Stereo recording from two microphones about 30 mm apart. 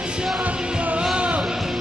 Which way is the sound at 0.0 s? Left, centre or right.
Right.